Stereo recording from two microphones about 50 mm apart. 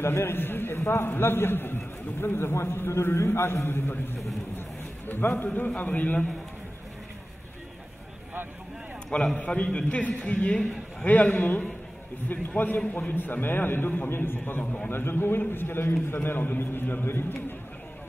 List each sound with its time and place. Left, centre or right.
0.0 s a man's voice: left
4.6 s a sound: left
5.5 s speech: left
9.1 s a man's voice: left